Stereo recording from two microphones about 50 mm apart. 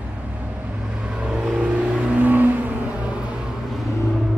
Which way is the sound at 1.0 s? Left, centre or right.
Centre.